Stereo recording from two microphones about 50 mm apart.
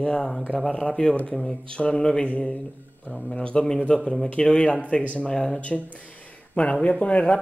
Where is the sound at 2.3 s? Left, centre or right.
Left.